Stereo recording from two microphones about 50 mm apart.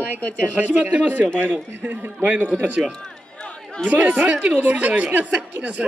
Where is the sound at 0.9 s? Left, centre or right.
Right.